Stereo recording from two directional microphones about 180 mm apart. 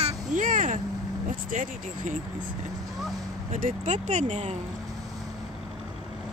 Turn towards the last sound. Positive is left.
turn(degrees=-40)  # may be behind; listen again after turning